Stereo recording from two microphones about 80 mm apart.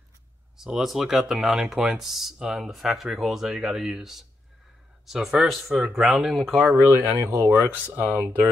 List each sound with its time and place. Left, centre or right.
0.6 s speech: centre
6.6 s speech: right
7.7 s speech: right